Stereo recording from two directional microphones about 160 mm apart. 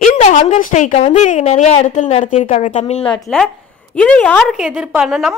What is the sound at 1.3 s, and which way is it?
Speech, 50° left (ahead or behind).